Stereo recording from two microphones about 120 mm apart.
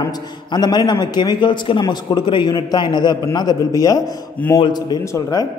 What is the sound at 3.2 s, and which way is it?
A man's voice, 30° left (ahead or behind).